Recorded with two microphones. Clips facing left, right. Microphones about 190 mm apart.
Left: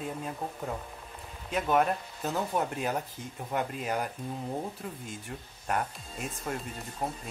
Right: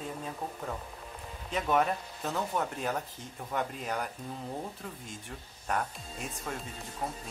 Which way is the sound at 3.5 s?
10° left (ahead or behind).